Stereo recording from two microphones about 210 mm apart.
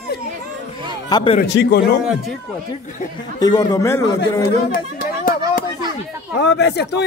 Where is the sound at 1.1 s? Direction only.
20° left (ahead or behind).